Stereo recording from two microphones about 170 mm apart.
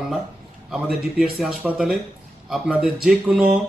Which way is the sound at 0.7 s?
5° right (ahead or behind).